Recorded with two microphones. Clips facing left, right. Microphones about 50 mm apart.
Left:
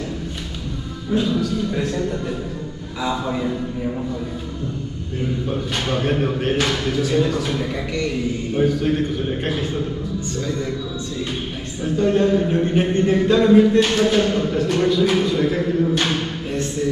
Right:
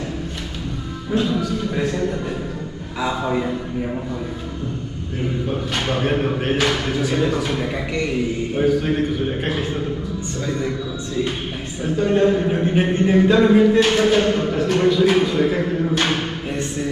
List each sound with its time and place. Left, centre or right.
1.2 s a man's voice: centre
3.0 s a man's voice: centre
5.9 s a man's voice: centre
11.8 s a man's voice: centre
16.0 s a sound: centre